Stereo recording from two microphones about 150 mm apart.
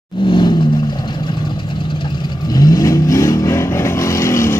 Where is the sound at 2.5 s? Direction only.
25° left (ahead or behind).